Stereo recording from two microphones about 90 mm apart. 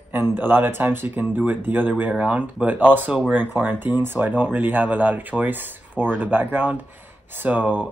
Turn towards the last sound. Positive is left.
turn(degrees=-20)  # may be behind; listen again after turning